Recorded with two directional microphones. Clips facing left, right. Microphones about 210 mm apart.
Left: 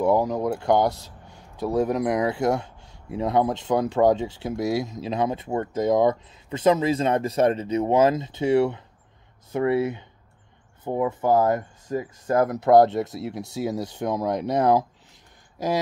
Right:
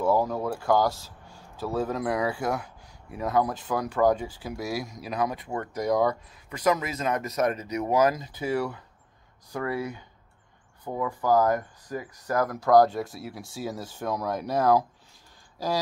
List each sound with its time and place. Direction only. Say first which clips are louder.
0.0 s speech: left 3 dB; 20° left (ahead or behind)